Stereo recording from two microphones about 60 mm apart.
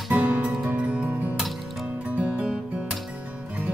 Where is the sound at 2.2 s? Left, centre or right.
Centre.